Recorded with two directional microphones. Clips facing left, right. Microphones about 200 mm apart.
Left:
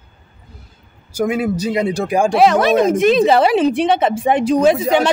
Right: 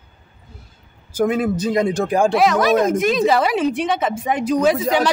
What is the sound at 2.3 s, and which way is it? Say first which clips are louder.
Speech: left 5 dB; 30° left (ahead or behind).